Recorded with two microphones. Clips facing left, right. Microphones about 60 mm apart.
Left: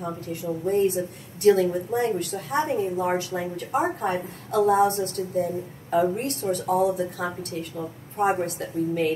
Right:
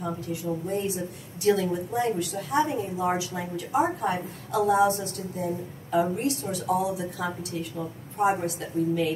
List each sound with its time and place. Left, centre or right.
0.0 s a woman's voice: left